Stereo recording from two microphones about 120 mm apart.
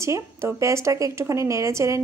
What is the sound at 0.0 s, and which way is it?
Speech, 25° right (ahead or behind).